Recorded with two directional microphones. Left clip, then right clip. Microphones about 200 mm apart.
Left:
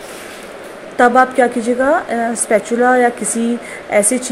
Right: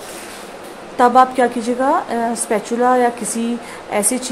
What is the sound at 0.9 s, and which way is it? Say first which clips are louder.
A woman's voice: left 1 dB; centre (ahead or behind).